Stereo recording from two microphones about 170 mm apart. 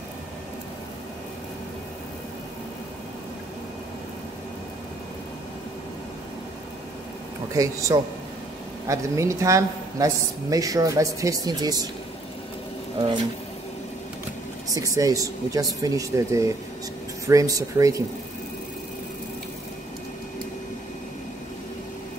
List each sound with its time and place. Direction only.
7.5 s a woman's voice: 20° right (ahead or behind)
14.7 s a woman's voice: 20° right (ahead or behind)